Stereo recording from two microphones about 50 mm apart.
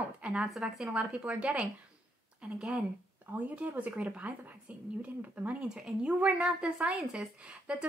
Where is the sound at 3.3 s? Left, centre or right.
Right.